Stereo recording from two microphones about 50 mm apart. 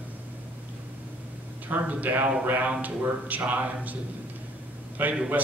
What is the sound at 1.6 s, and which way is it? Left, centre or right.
A man's voice, right.